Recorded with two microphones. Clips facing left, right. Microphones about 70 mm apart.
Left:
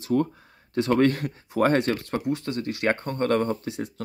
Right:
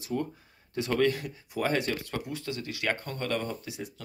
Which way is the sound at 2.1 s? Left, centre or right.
Left.